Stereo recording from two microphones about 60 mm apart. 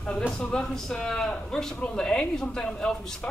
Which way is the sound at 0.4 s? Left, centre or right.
Centre.